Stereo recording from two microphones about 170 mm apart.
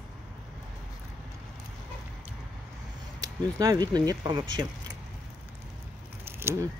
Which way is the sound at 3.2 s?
20° right (ahead or behind).